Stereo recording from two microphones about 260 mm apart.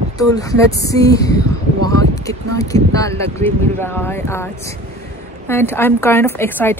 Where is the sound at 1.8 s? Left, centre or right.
Right.